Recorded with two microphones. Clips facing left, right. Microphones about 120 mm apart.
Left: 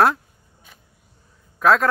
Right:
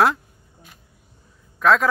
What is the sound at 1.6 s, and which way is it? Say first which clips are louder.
Speech: left 1 dB; centre (ahead or behind).